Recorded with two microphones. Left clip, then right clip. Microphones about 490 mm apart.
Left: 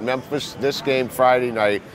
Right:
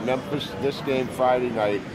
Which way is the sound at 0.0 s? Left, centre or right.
Left.